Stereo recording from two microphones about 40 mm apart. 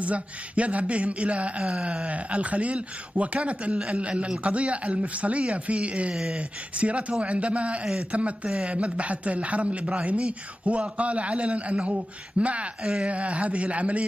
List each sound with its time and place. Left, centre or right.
0.0 s a man's voice: right